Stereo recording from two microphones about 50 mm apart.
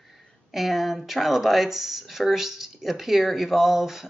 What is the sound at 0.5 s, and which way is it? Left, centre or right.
Speech, centre.